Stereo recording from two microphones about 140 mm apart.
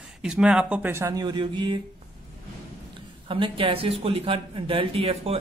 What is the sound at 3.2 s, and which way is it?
Speech, 40° right (ahead or behind).